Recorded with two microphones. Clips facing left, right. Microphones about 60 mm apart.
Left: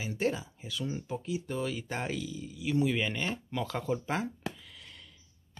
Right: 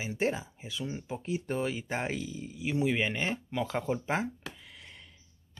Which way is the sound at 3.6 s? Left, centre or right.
Right.